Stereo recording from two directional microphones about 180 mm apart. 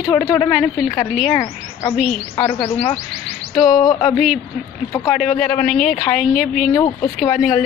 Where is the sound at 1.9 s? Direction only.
45° left (ahead or behind).